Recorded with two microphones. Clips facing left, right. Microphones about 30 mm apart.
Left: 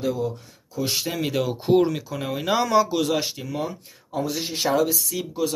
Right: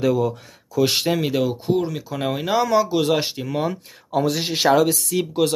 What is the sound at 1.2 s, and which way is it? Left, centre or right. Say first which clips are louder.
Speech: right 3 dB; centre.